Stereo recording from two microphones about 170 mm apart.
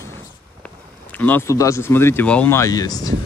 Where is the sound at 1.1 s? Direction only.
10° left (ahead or behind).